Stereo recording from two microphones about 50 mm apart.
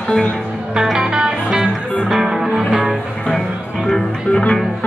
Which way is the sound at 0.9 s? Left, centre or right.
Centre.